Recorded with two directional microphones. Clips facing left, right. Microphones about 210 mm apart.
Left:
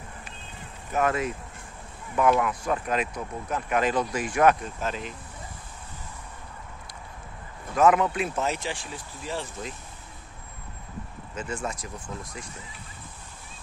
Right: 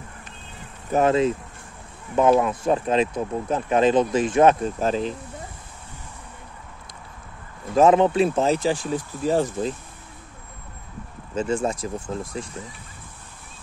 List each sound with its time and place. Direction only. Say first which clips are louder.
0.9 s speech: right 7 dB; 25° right (ahead or behind)
7.7 s speech: right 5 dB; 30° right (ahead or behind)
11.3 s speech: right 9 dB; 30° right (ahead or behind)